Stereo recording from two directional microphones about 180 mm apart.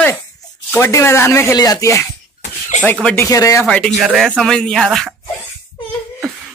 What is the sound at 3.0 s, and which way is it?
Speech, 15° left (ahead or behind).